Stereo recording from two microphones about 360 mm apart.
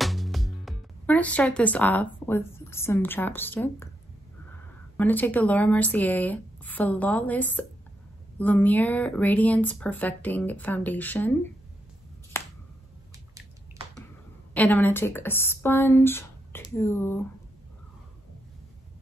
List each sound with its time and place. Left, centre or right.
0.0 s speech: centre
4.9 s speech: centre
12.3 s finger snapping: centre
14.5 s speech: centre